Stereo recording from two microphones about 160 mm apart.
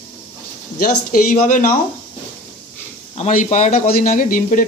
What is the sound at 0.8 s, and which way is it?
Speech, 55° left (ahead or behind).